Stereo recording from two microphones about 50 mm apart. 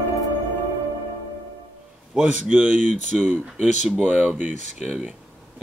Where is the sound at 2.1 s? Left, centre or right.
Centre.